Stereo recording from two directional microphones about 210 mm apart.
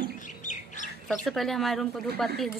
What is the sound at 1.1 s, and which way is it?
A woman's voice, centre (ahead or behind).